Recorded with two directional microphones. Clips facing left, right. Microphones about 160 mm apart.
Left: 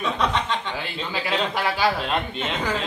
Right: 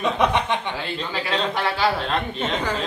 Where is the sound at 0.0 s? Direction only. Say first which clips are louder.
Right 3 dB; 15° right (ahead or behind).